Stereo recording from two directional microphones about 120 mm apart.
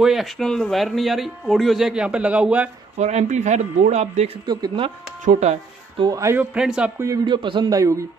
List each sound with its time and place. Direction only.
0.0 s speech: centre (ahead or behind)
3.0 s speech: 70° right (ahead or behind)
4.5 s speech: 35° right (ahead or behind)
5.2 s speech: 75° right (ahead or behind)
6.1 s a man's voice: 25° right (ahead or behind)
6.5 s speech: 10° right (ahead or behind)
7.2 s speech: 40° right (ahead or behind)
7.7 s a man's voice: 25° right (ahead or behind)